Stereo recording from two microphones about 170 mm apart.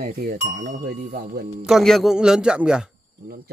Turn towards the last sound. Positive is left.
turn(degrees=-60)  # may be behind; listen again after turning